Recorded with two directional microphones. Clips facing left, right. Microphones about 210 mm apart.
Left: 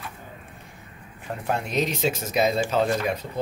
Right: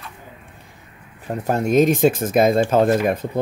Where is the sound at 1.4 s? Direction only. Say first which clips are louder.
Right 10 dB; 45° right (ahead or behind).